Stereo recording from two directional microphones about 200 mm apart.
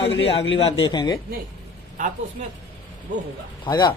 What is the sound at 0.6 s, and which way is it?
Speech, 25° left (ahead or behind).